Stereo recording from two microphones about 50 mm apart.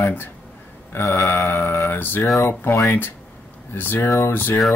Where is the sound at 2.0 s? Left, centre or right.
Left.